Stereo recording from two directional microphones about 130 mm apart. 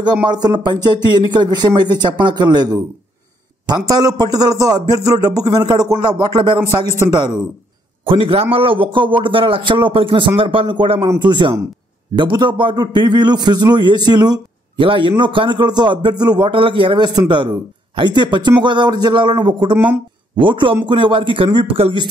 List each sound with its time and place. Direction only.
0.0 s a man's voice: 35° right (ahead or behind)
8.0 s a man's voice: 45° right (ahead or behind)